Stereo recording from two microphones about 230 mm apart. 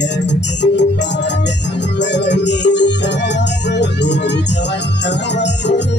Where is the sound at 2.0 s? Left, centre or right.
Left.